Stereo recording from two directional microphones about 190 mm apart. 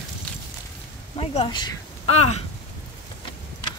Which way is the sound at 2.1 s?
35° left (ahead or behind).